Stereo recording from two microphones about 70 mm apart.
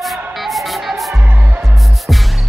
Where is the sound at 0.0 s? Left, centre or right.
Centre.